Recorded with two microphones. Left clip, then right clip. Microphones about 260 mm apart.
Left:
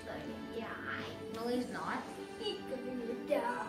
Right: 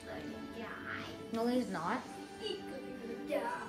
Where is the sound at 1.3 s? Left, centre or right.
Right.